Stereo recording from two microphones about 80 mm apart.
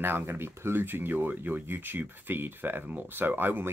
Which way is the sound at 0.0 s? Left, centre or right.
Right.